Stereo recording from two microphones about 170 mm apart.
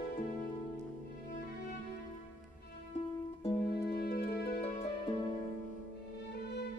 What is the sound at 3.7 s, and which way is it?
Music, 70° left (ahead or behind).